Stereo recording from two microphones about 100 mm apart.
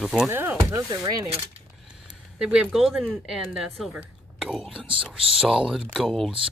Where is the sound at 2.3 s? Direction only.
10° right (ahead or behind).